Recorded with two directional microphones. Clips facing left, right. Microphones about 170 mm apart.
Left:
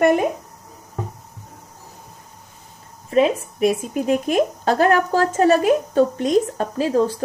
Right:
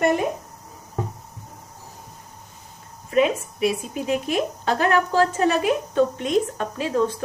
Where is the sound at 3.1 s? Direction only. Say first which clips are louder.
Left 3 dB; 40° left (ahead or behind).